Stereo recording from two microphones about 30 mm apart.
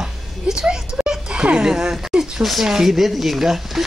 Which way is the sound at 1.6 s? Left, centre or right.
Right.